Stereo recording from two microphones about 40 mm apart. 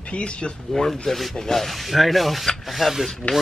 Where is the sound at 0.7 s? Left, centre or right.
Centre.